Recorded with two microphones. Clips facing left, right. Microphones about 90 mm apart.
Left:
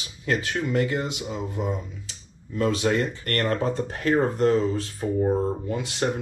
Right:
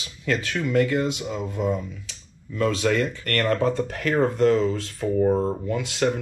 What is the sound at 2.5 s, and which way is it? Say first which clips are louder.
Speech: right 1 dB; 25° left (ahead or behind).